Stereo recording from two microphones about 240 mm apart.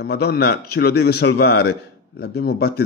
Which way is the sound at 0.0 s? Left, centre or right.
Left.